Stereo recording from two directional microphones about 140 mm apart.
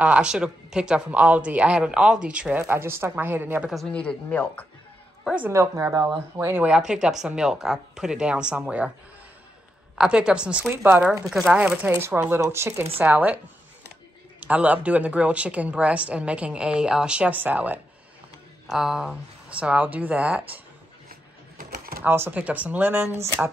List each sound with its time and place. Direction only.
0.0 s speech: 10° right (ahead or behind)
2.6 s speech: 20° right (ahead or behind)
3.7 s speech: 5° left (ahead or behind)
5.2 s a sound: 10° right (ahead or behind)
5.5 s speech: 20° right (ahead or behind)
9.9 s speech: 5° right (ahead or behind)
14.4 s speech: 10° right (ahead or behind)
21.1 s a sound: 85° right
22.0 s speech: 15° right (ahead or behind)